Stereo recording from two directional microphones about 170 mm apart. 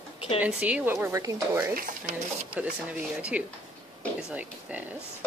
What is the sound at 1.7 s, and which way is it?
Stir, 55° right (ahead or behind).